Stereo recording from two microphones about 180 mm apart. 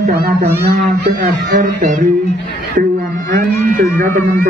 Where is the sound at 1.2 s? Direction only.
45° right (ahead or behind).